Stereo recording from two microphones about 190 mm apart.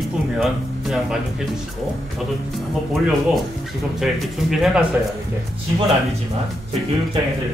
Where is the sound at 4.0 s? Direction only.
Centre (ahead or behind).